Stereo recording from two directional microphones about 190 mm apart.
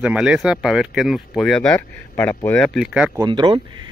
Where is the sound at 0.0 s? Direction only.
5° right (ahead or behind).